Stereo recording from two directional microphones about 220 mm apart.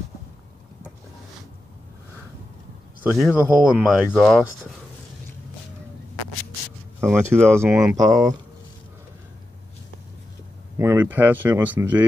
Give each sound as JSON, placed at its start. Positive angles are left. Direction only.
{"t": 3.0, "sound": "speech", "side_deg": -5}
{"t": 7.0, "sound": "speech", "side_deg": -10}
{"t": 10.8, "sound": "speech", "side_deg": -10}